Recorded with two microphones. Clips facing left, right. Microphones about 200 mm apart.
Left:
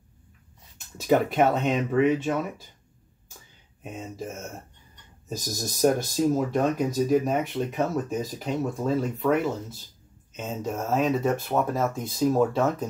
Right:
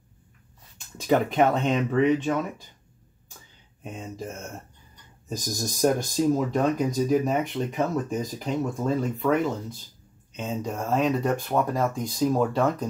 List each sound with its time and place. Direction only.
1.0 s speech: 5° left (ahead or behind)
3.8 s speech: 5° left (ahead or behind)